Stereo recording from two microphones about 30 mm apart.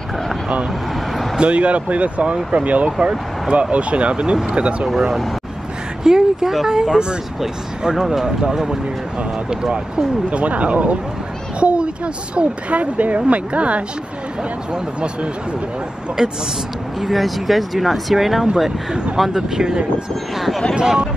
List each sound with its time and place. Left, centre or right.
0.9 s vehicle: centre
1.4 s speech: right
3.0 s speech: right
3.7 s speech: right
4.9 s speech: centre; by 7.2 s right
7.8 s speech: centre
8.5 s speech: right
10.3 s speech: right
16.2 s speech: right
17.0 s speech: centre
19.3 s speech: right
20.3 s speech: centre